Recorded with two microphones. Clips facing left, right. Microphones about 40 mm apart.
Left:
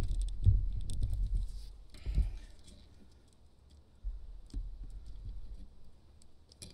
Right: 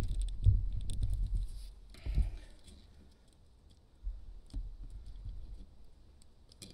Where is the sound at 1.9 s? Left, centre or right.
Centre.